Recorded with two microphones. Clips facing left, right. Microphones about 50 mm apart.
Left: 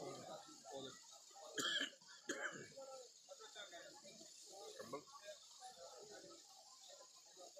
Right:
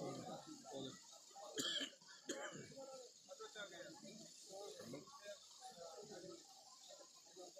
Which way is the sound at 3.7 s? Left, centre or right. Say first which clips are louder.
Right 2 dB; centre.